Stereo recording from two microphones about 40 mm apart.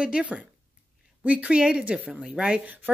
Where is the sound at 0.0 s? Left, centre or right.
Right.